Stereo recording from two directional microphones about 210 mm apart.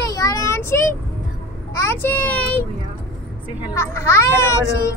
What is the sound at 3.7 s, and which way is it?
Speech, 10° left (ahead or behind).